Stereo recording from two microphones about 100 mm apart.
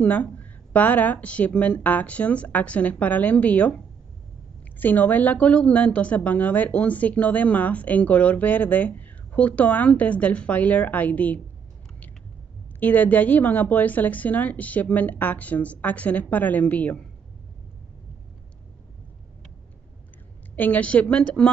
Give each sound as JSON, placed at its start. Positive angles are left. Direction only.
{"t": 0.0, "sound": "a woman's voice", "side_deg": 15}
{"t": 4.7, "sound": "a woman's voice", "side_deg": 15}
{"t": 12.8, "sound": "a woman's voice", "side_deg": 15}
{"t": 20.5, "sound": "a woman's voice", "side_deg": 15}